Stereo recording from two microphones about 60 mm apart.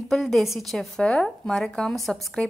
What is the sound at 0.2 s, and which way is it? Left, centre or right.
Speech, centre.